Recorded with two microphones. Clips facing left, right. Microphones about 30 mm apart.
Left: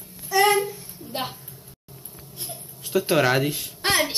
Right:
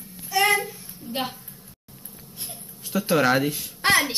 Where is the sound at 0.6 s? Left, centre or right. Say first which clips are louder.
Left 4 dB; centre.